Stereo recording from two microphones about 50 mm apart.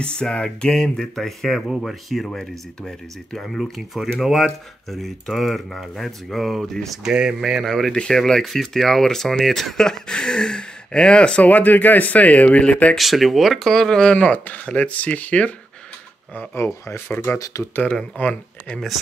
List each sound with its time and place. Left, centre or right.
0.0 s speech: centre
2.2 s speech: centre
7.9 s speech: centre
11.4 s speech: left
12.9 s speech: centre
14.1 s speech: left
17.5 s speech: left
18.1 s speech: left